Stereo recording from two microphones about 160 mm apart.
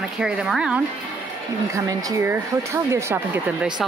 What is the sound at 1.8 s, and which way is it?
Speech, 20° right (ahead or behind).